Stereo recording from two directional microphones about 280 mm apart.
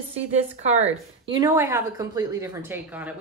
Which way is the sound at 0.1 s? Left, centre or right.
Right.